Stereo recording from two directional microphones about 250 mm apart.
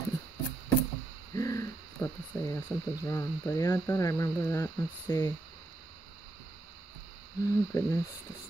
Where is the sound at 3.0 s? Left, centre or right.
Centre.